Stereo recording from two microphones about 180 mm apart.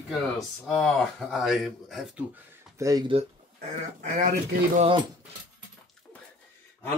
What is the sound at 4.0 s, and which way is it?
Speech, 45° right (ahead or behind).